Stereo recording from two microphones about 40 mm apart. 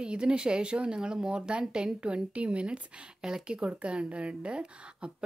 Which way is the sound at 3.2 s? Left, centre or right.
Centre.